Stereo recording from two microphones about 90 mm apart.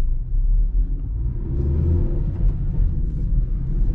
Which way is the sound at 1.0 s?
10° right (ahead or behind).